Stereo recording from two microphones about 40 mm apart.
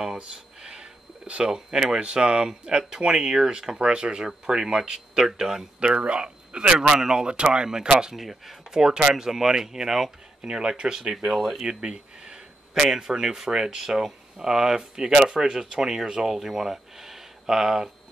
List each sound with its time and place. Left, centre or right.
0.2 s speech: centre
2.0 s speech: right
5.8 s speech: right; by 10.1 s centre
10.4 s speech: right; by 11.6 s centre
11.6 s a sound: centre
12.9 s speech: centre